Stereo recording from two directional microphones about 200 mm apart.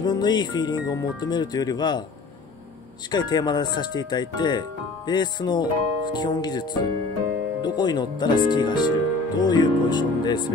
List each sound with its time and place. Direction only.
0.0 s speech: 20° left (ahead or behind)
3.1 s speech: 20° left (ahead or behind)